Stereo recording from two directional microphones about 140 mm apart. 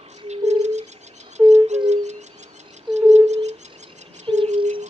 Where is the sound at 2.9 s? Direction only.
35° right (ahead or behind).